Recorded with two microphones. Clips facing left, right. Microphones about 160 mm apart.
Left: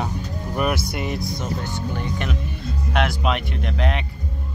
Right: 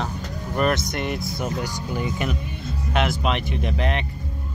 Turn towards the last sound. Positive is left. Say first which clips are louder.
# even
turn(degrees=0)  # may be behind; listen again after turning